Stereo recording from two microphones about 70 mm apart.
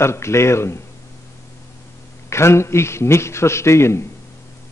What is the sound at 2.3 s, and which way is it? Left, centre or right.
A man's voice, left.